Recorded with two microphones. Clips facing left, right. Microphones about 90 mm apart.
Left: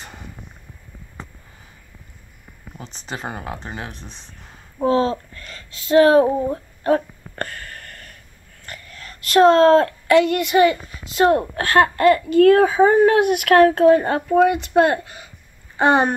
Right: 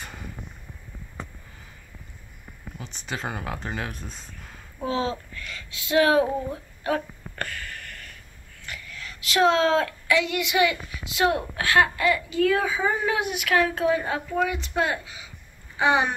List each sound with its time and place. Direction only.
2.8 s speech: 35° left (ahead or behind)
4.8 s a sound: 40° left (ahead or behind)
8.6 s speech: 40° left (ahead or behind)